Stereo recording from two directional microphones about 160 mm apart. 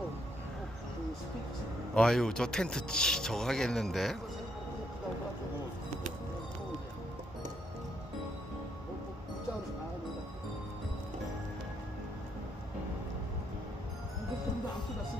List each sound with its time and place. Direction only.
2.0 s a man's voice: 5° left (ahead or behind)